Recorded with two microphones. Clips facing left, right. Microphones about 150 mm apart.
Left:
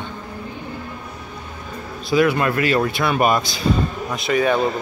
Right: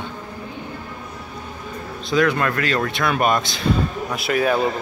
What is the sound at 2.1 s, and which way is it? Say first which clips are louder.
Speech: left 2 dB; 5° left (ahead or behind).